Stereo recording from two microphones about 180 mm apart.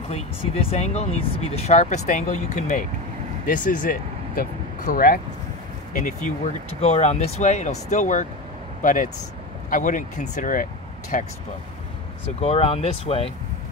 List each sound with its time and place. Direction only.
0.7 s speech: 40° left (ahead or behind)
12.4 s speech: 35° left (ahead or behind)